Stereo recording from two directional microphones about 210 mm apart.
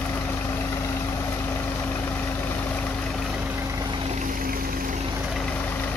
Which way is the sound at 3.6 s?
15° right (ahead or behind).